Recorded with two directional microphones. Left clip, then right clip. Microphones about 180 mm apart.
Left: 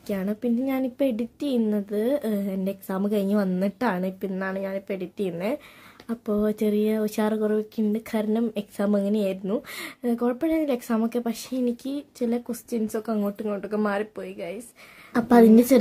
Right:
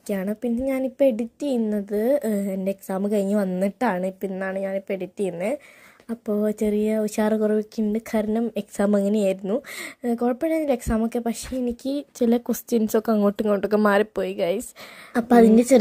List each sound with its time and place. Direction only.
0.1 s speech: 25° right (ahead or behind); by 14.6 s 50° right (ahead or behind)
15.1 s speech: 20° right (ahead or behind)